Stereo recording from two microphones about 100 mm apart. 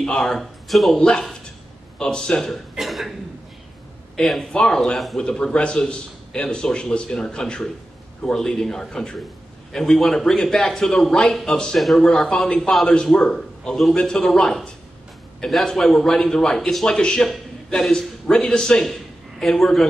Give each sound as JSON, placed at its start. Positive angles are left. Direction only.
{"t": 0.0, "sound": "a man's voice", "side_deg": 5}
{"t": 4.2, "sound": "a man's voice", "side_deg": 5}